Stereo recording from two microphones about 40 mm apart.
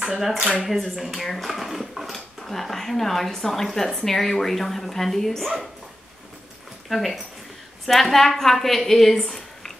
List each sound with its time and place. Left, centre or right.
0.0 s speech: centre
0.7 s speech: centre
6.9 s a woman's voice: centre